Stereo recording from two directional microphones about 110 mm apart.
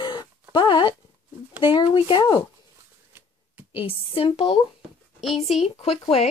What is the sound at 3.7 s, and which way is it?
A woman's voice, 55° left (ahead or behind).